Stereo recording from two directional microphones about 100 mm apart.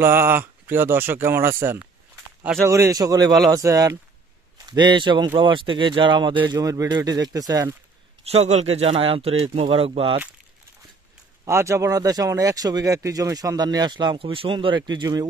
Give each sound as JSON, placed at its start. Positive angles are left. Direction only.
{"t": 0.0, "sound": "speech", "side_deg": -25}
{"t": 4.6, "sound": "a man's voice", "side_deg": -50}
{"t": 8.2, "sound": "a man's voice", "side_deg": -90}
{"t": 11.4, "sound": "a man's voice", "side_deg": -30}